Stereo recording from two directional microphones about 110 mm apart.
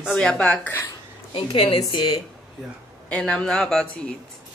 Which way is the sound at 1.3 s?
55° left (ahead or behind).